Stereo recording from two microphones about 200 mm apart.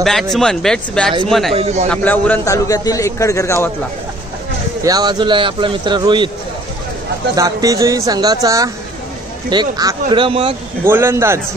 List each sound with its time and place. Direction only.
0.0 s speech: centre (ahead or behind)
1.5 s a man's voice: 30° right (ahead or behind)
1.9 s a man's voice: 10° left (ahead or behind)
4.8 s a man's voice: 20° right (ahead or behind)
7.3 s a man's voice: 15° right (ahead or behind)
10.8 s speech: 10° right (ahead or behind)